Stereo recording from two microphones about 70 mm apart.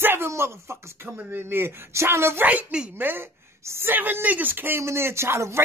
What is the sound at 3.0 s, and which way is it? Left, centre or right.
Speech, right.